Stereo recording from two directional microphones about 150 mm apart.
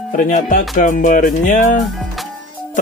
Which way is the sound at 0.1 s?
60° left (ahead or behind).